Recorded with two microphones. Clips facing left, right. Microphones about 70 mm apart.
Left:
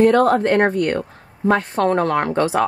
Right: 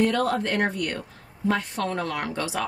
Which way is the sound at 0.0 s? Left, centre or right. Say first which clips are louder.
Left 9 dB; left.